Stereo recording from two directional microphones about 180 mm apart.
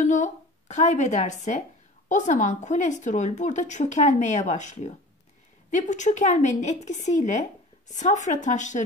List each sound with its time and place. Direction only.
0.0 s a woman's voice: 40° left (ahead or behind)